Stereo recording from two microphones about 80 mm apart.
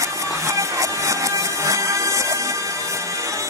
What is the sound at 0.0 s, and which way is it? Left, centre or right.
Music, right.